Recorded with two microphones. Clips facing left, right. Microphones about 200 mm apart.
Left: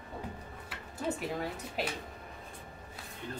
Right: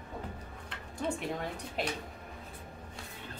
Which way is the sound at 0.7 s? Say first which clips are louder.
Even; 5° left (ahead or behind).